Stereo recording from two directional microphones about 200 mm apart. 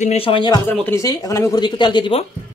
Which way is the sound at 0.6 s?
10° left (ahead or behind).